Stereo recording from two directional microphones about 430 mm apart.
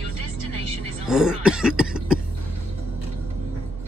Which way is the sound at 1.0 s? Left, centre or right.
Centre.